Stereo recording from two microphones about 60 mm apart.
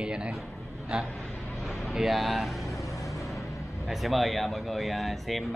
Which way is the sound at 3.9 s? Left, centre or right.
Centre.